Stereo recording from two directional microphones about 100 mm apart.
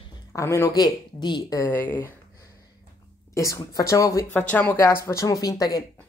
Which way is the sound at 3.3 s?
30° left (ahead or behind).